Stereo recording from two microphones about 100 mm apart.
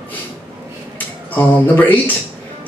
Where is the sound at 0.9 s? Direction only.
15° left (ahead or behind).